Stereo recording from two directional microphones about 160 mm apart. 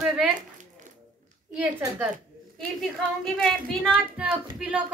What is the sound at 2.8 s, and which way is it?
A woman's voice, 5° left (ahead or behind).